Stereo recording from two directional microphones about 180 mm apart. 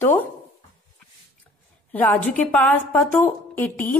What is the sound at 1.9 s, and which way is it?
A woman's voice, 10° left (ahead or behind).